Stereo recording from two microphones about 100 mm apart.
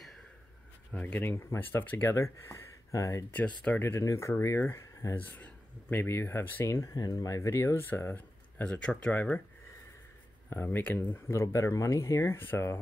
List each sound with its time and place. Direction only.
0.9 s speech: 15° left (ahead or behind); by 3.3 s 30° left (ahead or behind)
3.3 s speech: 15° left (ahead or behind)
3.8 s speech: 30° left (ahead or behind)
5.1 s speech: 15° left (ahead or behind)
10.5 s speech: 20° left (ahead or behind)